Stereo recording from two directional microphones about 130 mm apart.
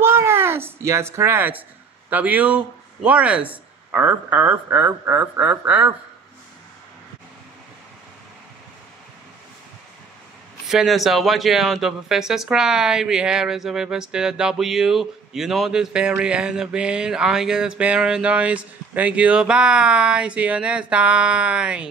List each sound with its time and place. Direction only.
0.0 s a sound: 20° right (ahead or behind)
2.0 s speech: 10° right (ahead or behind)
10.7 s speech: centre (ahead or behind)